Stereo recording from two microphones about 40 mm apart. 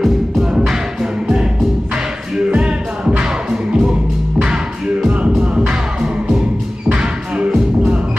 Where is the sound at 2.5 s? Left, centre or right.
Right.